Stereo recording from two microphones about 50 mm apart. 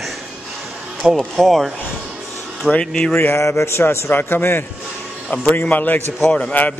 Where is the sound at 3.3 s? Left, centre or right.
Left.